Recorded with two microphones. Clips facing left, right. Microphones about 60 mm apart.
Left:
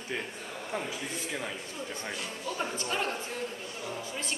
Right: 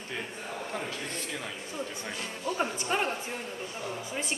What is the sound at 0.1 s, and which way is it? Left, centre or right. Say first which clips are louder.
Speech: right 1 dB; centre.